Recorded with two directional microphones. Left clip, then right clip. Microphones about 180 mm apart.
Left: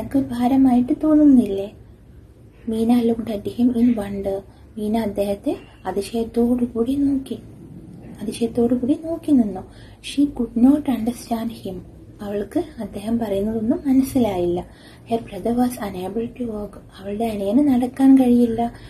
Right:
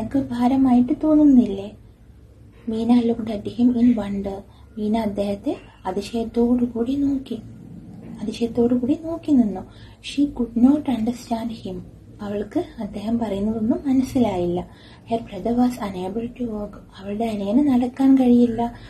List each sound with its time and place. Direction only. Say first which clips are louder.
0.1 s a woman's voice: left 2 dB; 15° left (ahead or behind)
2.8 s a woman's voice: left 1 dB; 20° left (ahead or behind)
10.7 s a woman's voice: left 2 dB; 20° left (ahead or behind)